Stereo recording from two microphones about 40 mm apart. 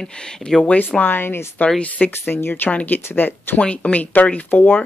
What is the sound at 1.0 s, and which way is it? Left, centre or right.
Speech, left.